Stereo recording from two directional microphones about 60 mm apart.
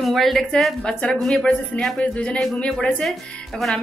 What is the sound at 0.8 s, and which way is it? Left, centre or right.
Speech, centre.